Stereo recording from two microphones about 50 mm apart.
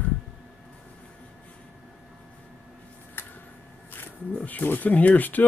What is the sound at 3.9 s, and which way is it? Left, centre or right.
Speech, left.